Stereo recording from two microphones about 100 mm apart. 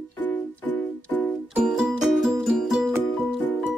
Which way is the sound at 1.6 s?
5° right (ahead or behind).